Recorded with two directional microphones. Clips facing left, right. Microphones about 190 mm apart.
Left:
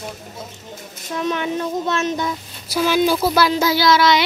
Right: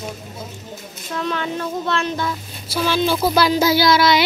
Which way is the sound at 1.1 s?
15° left (ahead or behind).